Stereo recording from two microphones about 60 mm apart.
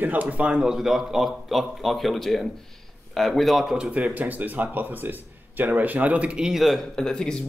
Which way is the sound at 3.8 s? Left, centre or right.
Centre.